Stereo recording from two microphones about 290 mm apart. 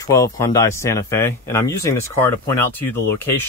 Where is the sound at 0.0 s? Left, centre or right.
Centre.